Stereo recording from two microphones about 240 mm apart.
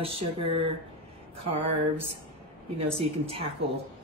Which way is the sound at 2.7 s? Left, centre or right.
Right.